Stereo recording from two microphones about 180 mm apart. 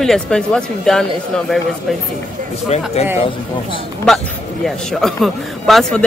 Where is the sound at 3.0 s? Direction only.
35° left (ahead or behind).